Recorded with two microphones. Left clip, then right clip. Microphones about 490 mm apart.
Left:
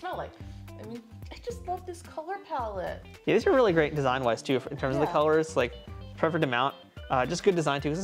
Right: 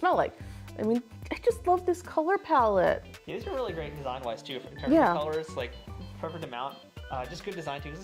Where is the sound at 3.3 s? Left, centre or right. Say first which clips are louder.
Left 12 dB; left.